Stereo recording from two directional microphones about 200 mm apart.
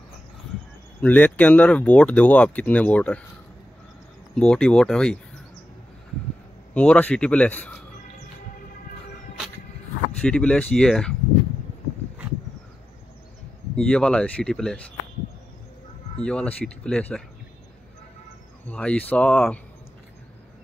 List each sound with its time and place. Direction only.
1.0 s speech: 5° left (ahead or behind)
4.4 s speech: 5° left (ahead or behind)
6.7 s speech: 5° left (ahead or behind)
10.2 s speech: 5° left (ahead or behind)
13.7 s speech: 5° left (ahead or behind)
16.2 s speech: 5° left (ahead or behind)
18.7 s speech: 5° left (ahead or behind)